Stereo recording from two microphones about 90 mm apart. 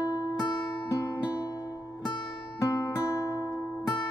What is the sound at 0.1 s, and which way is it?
Music, 40° left (ahead or behind).